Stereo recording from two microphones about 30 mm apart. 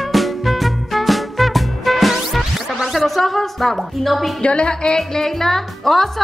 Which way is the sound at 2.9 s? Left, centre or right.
Centre.